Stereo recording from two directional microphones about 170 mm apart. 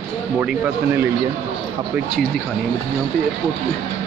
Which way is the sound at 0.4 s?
10° right (ahead or behind).